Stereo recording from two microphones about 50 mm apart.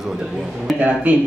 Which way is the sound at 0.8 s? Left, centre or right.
Right.